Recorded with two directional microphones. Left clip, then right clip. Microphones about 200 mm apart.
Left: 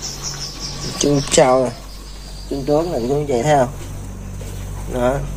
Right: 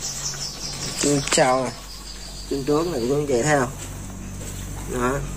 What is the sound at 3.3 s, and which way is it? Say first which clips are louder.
Speech: left 6 dB; 10° left (ahead or behind).